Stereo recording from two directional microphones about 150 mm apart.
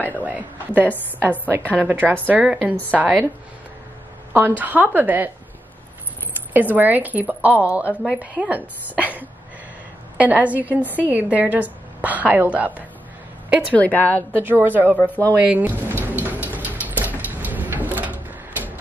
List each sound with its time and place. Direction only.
0.2 s a woman's voice: 10° right (ahead or behind)
4.3 s a woman's voice: 15° right (ahead or behind)
6.5 s a woman's voice: 10° right (ahead or behind)
13.7 s a woman's voice: 10° left (ahead or behind)
14.3 s a woman's voice: 15° right (ahead or behind)
16.0 s rain: 10° right (ahead or behind)
16.8 s a sound: 10° right (ahead or behind)